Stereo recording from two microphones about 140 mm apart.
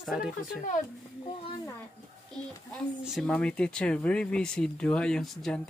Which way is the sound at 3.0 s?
5° right (ahead or behind).